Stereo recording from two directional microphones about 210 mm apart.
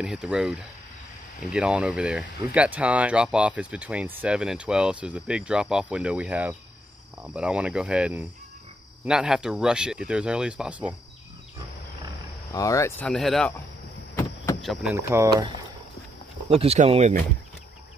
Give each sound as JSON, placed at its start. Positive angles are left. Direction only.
{"t": 0.0, "sound": "speech", "side_deg": -5}
{"t": 12.5, "sound": "speech", "side_deg": 15}
{"t": 14.1, "sound": "a sound", "side_deg": 15}
{"t": 14.6, "sound": "speech", "side_deg": 0}
{"t": 15.0, "sound": "speech", "side_deg": -15}
{"t": 16.4, "sound": "speech", "side_deg": -30}